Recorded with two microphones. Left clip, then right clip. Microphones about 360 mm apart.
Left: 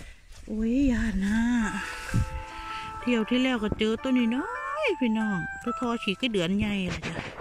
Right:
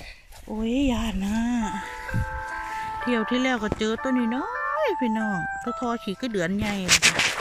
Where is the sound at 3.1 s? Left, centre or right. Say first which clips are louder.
Right 1 dB; centre.